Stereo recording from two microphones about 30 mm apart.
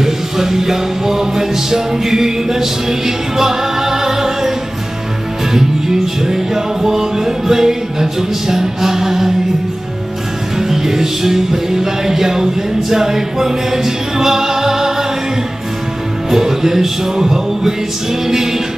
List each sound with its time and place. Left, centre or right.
0.0 s music: centre
5.5 s music: centre
10.6 s music: centre
16.3 s music: centre